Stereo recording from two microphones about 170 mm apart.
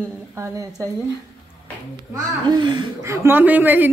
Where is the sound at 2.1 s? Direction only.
25° right (ahead or behind).